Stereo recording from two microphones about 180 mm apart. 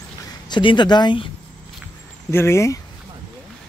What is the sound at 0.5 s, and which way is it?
Speech, 25° left (ahead or behind).